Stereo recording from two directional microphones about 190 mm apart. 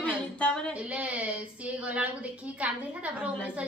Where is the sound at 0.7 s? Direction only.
5° right (ahead or behind).